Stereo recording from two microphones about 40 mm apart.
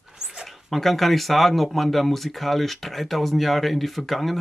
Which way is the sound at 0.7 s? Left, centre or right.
Centre.